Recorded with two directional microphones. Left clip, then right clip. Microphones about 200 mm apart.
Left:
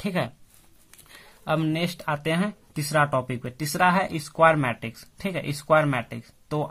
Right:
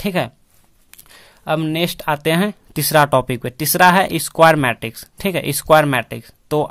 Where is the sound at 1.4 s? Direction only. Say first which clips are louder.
Right 7 dB; 25° right (ahead or behind).